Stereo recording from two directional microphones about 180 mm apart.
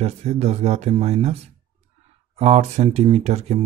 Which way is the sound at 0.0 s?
35° right (ahead or behind).